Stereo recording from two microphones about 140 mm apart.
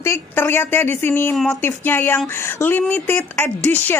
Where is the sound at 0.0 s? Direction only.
15° left (ahead or behind).